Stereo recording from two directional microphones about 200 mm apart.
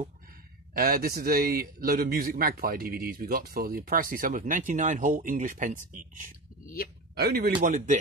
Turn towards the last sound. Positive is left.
turn(degrees=-40)  # may be behind; listen again after turning